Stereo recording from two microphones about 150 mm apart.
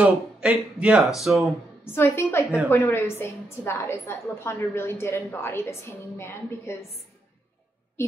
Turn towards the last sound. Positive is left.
turn(degrees=15)  # may be behind; listen again after turning